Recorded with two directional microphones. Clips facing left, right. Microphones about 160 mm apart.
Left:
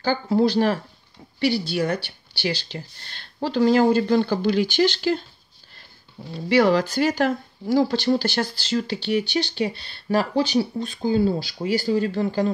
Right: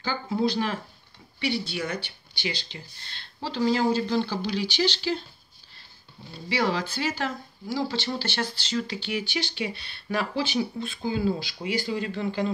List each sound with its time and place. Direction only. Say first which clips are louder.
0.3 s speech: left 7 dB; 50° left (ahead or behind)
1.4 s speech: left 7 dB; 35° left (ahead or behind)
2.7 s speech: left 7 dB; 50° left (ahead or behind)
6.6 s speech: left 7 dB; 45° left (ahead or behind)